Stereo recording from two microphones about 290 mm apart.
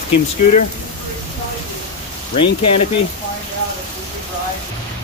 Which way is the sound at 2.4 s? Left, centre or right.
Left.